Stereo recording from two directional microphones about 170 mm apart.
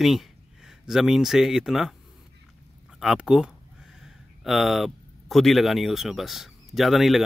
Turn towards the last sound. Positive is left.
turn(degrees=0)  # may be behind; listen again after turning